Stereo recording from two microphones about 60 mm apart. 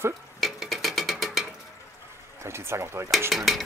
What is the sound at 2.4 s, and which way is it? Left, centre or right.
Speech, right.